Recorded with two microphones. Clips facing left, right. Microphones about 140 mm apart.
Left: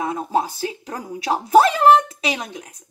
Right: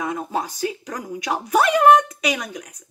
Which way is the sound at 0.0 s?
30° left (ahead or behind).